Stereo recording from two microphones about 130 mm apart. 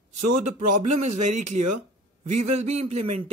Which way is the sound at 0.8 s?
65° right (ahead or behind).